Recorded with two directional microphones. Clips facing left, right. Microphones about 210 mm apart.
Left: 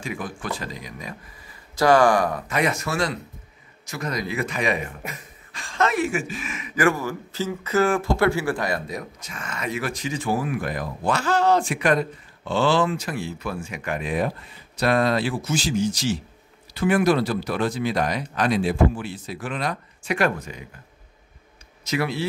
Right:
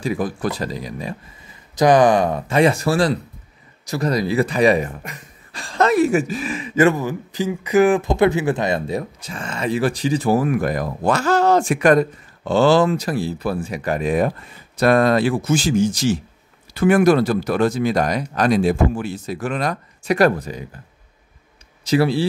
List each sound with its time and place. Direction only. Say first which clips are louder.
0.0 s speech: right 9 dB; 35° right (ahead or behind)
1.8 s speech: right 4 dB; 20° right (ahead or behind); by 20.6 s 35° right (ahead or behind)
21.8 s speech: right 8 dB; 30° right (ahead or behind)